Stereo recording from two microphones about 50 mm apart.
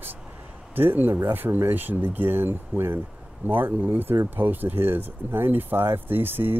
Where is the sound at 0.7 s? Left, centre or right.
Right.